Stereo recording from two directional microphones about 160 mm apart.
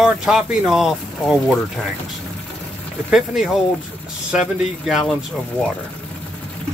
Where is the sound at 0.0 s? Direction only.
5° right (ahead or behind).